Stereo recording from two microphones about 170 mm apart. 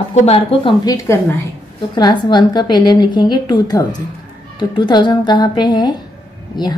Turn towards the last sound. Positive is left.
turn(degrees=25)  # may be behind; listen again after turning